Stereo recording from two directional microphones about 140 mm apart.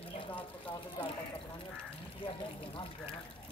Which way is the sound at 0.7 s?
35° left (ahead or behind).